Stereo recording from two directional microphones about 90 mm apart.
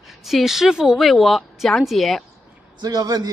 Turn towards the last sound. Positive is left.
turn(degrees=-50)  # may be behind; listen again after turning